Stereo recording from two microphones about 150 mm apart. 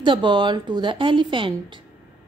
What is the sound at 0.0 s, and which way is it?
A woman's voice, 30° right (ahead or behind).